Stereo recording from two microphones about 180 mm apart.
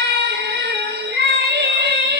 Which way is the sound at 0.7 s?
65° right (ahead or behind).